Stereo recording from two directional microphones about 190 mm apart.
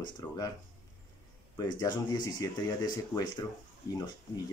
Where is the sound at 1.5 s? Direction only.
20° left (ahead or behind).